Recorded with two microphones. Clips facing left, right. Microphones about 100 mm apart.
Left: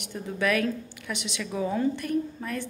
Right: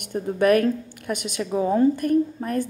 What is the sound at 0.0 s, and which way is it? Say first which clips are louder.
A woman's voice: right 8 dB; 50° right (ahead or behind).